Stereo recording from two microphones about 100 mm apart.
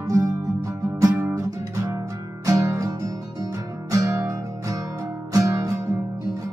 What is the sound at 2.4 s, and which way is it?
Music, 35° right (ahead or behind).